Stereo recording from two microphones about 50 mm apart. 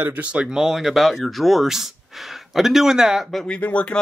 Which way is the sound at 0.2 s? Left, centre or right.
Right.